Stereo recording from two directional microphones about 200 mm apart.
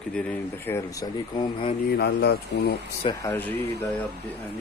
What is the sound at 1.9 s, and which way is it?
Speech, 55° left (ahead or behind).